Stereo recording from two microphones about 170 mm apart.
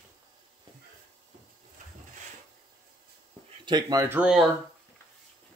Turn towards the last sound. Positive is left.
turn(degrees=0)  # may be behind; listen again after turning